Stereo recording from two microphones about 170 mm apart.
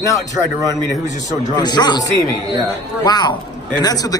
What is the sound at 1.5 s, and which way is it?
A man's voice, 25° left (ahead or behind).